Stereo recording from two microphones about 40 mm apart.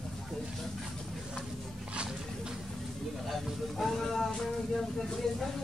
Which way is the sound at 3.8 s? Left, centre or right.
Centre.